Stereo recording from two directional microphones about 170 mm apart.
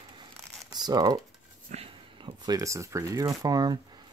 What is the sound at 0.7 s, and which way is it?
Speech, 25° right (ahead or behind).